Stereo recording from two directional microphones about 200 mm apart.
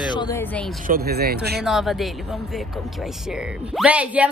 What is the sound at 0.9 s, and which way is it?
Speech, 50° right (ahead or behind).